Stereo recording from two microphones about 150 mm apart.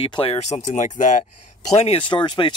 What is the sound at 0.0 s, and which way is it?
Speech, 35° left (ahead or behind).